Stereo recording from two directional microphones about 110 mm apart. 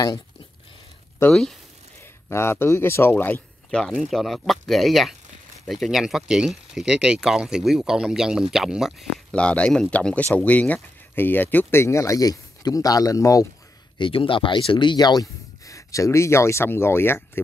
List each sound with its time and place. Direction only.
1.3 s speech: 5° left (ahead or behind)
2.0 s speech: 25° left (ahead or behind)
3.9 s speech: centre (ahead or behind)
9.3 s speech: 10° left (ahead or behind); by 13.5 s 30° left (ahead or behind)
13.9 s speech: 50° left (ahead or behind); by 17.2 s 20° left (ahead or behind)